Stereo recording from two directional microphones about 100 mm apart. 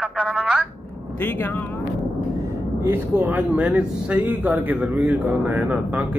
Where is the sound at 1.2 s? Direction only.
20° left (ahead or behind).